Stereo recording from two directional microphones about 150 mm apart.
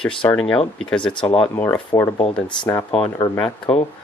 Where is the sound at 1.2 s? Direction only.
35° left (ahead or behind).